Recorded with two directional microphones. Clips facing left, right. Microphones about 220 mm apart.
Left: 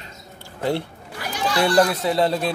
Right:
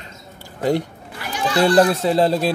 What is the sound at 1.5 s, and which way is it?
Speech, 35° right (ahead or behind).